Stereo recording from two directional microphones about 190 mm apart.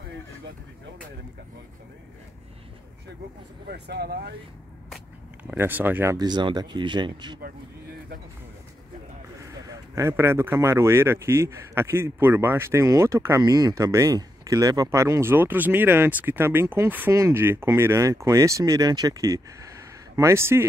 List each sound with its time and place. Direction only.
3.7 s speech: 60° right (ahead or behind)
4.9 s speech: 10° right (ahead or behind)
6.1 s speech: 20° right (ahead or behind)
9.5 s speech: 15° right (ahead or behind)